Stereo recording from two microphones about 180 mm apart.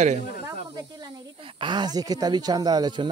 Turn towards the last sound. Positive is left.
turn(degrees=-25)  # may be behind; listen again after turning